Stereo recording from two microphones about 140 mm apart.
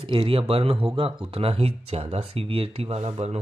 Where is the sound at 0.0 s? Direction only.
40° right (ahead or behind).